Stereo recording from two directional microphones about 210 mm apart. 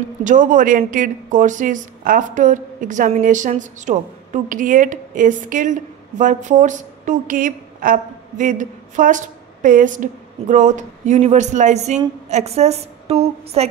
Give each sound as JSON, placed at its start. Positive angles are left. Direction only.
{"t": 0.2, "sound": "a woman's voice", "side_deg": -35}